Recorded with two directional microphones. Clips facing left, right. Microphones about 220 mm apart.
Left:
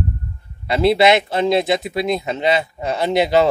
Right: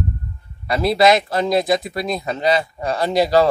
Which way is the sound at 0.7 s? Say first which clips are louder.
Left 1 dB; 25° left (ahead or behind).